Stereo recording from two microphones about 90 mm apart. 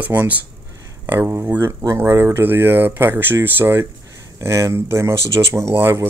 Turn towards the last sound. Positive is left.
turn(degrees=-25)  # may be behind; listen again after turning